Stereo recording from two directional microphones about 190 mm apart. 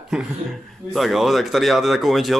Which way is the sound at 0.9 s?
Centre (ahead or behind).